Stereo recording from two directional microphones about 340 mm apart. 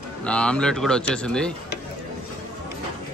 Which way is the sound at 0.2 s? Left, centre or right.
Centre.